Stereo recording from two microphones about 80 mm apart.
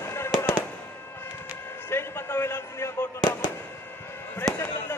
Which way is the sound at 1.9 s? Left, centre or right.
Left.